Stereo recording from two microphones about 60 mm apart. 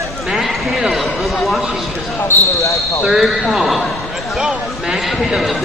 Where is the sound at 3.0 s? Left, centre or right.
Centre.